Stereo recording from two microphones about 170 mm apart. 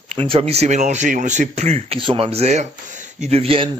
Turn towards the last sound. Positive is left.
turn(degrees=-35)  # may be behind; listen again after turning